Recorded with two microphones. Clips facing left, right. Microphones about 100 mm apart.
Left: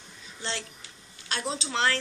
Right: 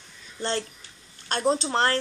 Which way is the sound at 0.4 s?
50° right (ahead or behind).